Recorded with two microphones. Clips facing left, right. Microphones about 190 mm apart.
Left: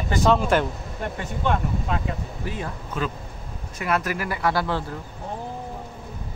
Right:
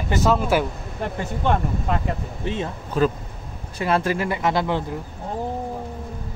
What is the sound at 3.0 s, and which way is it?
Speech, 40° right (ahead or behind).